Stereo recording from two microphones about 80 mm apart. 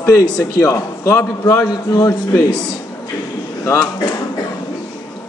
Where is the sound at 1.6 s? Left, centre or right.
Left.